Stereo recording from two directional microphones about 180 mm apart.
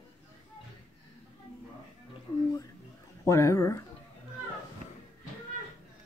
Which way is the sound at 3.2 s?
15° left (ahead or behind).